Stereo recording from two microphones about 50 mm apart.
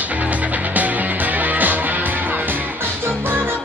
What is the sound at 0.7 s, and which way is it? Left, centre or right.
Music, right.